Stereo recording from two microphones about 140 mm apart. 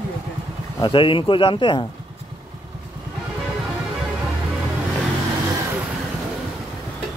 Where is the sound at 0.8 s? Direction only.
35° left (ahead or behind).